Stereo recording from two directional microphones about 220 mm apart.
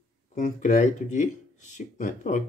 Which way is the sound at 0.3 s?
35° left (ahead or behind).